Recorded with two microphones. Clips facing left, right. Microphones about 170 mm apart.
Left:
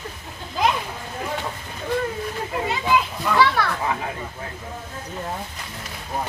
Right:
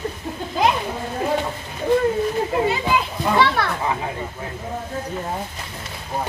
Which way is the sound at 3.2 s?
25° right (ahead or behind).